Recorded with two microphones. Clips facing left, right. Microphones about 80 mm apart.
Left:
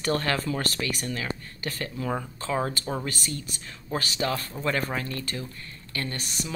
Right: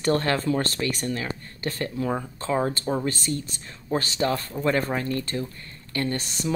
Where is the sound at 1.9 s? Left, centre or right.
Right.